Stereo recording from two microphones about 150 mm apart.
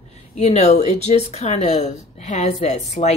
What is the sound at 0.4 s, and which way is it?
Speech, 50° left (ahead or behind).